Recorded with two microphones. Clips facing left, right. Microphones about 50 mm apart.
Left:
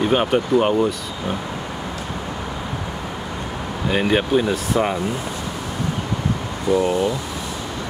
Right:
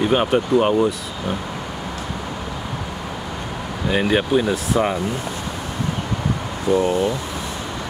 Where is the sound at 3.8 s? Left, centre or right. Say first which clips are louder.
Even; centre.